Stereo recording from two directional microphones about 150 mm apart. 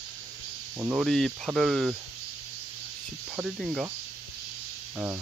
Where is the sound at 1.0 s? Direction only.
Centre (ahead or behind).